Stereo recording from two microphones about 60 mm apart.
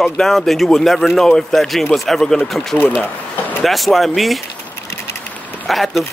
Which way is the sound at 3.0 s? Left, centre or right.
Left.